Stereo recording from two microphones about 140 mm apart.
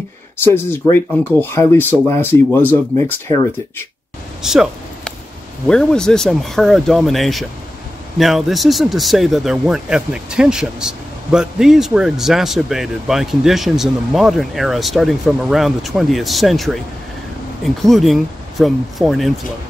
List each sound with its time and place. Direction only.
0.4 s speech: 15° left (ahead or behind)
3.3 s speech: 30° left (ahead or behind)
4.4 s speech: 5° right (ahead or behind)
5.7 s speech: 5° left (ahead or behind)
17.8 s speech: centre (ahead or behind)